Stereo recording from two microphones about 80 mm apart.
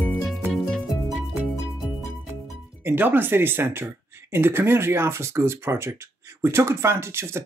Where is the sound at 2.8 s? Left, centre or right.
Right.